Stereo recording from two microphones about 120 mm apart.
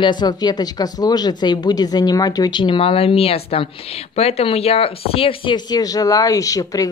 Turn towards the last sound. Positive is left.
turn(degrees=30)  # may be behind; listen again after turning